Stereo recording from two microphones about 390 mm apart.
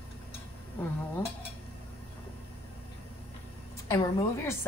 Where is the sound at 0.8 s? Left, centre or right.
Centre.